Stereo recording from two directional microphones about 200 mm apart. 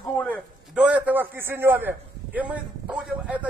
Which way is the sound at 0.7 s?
5° right (ahead or behind).